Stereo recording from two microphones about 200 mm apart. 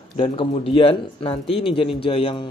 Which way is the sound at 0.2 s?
25° left (ahead or behind).